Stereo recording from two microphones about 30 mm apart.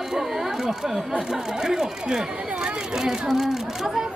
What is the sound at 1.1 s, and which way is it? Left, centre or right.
Speech, centre.